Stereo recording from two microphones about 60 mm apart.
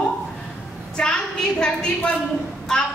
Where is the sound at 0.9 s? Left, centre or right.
Centre.